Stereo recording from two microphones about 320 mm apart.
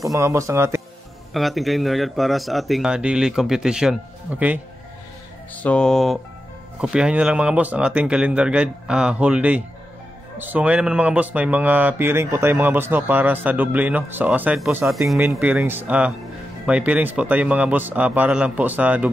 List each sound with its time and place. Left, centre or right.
0.0 s speech: centre